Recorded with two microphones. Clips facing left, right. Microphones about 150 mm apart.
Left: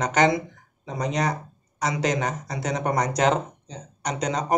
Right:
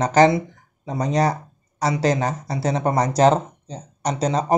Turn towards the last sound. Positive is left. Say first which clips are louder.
# right 5 dB
turn(degrees=-30)  # may be behind; listen again after turning